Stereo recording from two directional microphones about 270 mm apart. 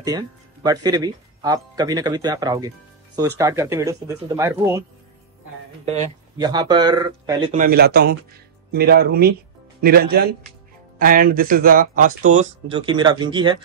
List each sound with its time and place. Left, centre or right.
0.0 s speech: centre
5.9 s speech: centre
7.5 s a man's voice: right; by 13.6 s centre